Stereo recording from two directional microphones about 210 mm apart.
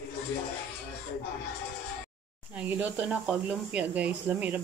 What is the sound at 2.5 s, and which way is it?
Speech, 5° right (ahead or behind).